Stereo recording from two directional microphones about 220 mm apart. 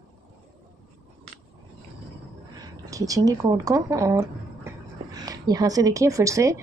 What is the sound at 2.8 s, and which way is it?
Speech, 15° right (ahead or behind).